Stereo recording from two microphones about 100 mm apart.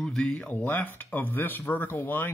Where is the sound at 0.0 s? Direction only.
5° left (ahead or behind).